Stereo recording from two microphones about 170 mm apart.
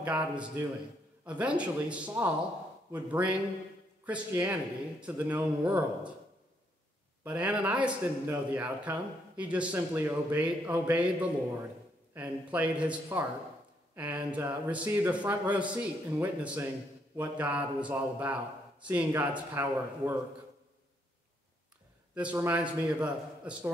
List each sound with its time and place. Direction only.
0.0 s a man's voice: 5° right (ahead or behind)
7.2 s a man's voice: 10° right (ahead or behind)
22.1 s a man's voice: 10° right (ahead or behind)